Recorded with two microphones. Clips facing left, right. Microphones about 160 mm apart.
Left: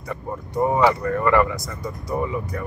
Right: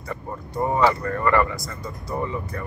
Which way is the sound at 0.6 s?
15° left (ahead or behind).